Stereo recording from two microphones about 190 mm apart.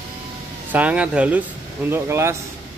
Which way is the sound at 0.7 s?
5° right (ahead or behind).